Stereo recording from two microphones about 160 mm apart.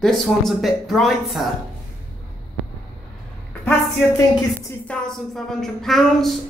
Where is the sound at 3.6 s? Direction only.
20° left (ahead or behind).